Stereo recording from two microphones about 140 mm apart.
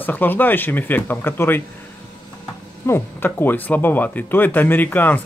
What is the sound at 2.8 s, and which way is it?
Speech, 15° left (ahead or behind).